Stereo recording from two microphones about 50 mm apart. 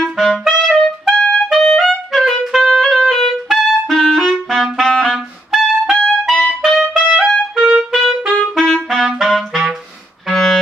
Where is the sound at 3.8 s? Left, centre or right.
Centre.